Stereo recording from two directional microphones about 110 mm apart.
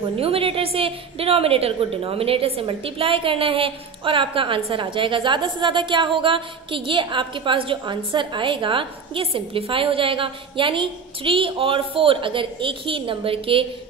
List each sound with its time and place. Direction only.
0.2 s a woman's voice: 60° right (ahead or behind)